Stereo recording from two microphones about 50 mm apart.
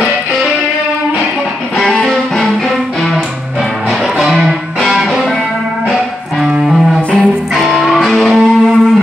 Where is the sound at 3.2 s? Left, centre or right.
Centre.